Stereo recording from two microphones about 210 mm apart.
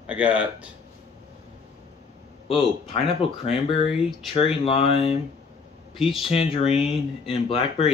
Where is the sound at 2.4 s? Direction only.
25° left (ahead or behind).